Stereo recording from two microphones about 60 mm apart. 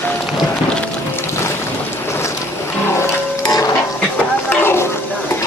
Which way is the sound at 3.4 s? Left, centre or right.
Left.